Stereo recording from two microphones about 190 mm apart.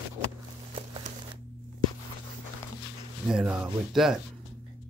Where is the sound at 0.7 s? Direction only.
30° right (ahead or behind).